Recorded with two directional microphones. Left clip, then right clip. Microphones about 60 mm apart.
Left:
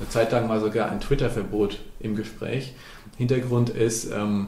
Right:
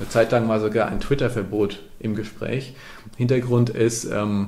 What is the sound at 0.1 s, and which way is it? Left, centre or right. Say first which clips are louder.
Speech: right 4 dB; right.